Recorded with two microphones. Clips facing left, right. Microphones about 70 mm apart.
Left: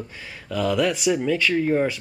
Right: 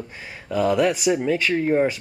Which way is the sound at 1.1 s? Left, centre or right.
Centre.